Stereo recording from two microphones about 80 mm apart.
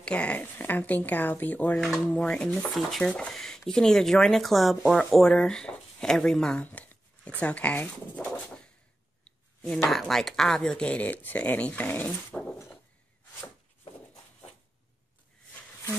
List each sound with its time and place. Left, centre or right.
0.0 s speech: centre
2.5 s speech: centre
6.6 s speech: centre
9.8 s speech: centre